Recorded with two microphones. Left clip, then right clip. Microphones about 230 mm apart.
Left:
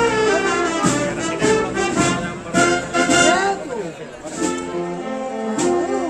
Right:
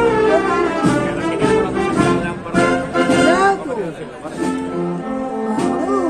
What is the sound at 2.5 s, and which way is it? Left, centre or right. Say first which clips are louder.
Music: right 1 dB; left.